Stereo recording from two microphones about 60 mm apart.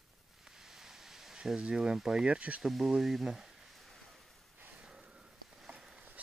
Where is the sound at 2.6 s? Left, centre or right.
Centre.